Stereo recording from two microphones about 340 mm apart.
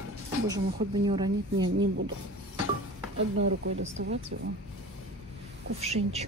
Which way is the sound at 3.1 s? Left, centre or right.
Right.